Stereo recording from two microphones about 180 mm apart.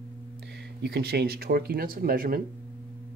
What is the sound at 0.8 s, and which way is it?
Speech, 65° right (ahead or behind).